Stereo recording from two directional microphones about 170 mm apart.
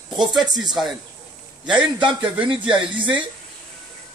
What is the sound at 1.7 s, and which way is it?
Speech, 5° right (ahead or behind).